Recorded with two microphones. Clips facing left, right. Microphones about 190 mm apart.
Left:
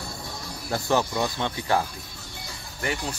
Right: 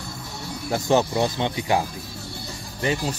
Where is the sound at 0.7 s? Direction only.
20° right (ahead or behind).